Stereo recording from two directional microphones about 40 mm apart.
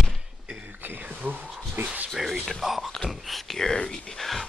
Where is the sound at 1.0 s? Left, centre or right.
Right.